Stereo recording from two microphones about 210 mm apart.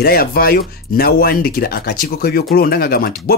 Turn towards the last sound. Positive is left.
turn(degrees=45)  # may be behind; listen again after turning